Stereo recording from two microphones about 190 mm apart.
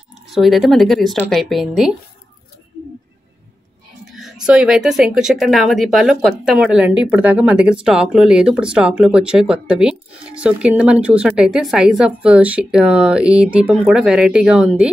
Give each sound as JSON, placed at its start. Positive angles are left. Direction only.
{"t": 0.3, "sound": "speech", "side_deg": 0}
{"t": 4.0, "sound": "music", "side_deg": 0}
{"t": 4.5, "sound": "speech", "side_deg": -5}